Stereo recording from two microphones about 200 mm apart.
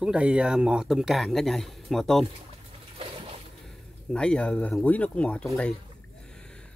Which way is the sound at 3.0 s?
30° right (ahead or behind).